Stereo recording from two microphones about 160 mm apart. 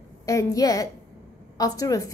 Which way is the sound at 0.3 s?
20° left (ahead or behind).